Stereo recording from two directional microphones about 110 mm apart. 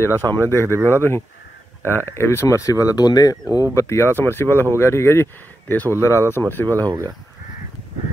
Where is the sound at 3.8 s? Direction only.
25° left (ahead or behind).